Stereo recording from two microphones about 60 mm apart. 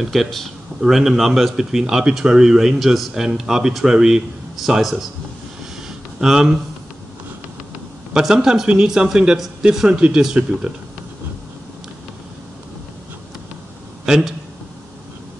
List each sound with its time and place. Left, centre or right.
0.0 s a man's voice: centre
6.2 s a man's voice: centre
8.1 s a man's voice: centre
14.0 s speech: centre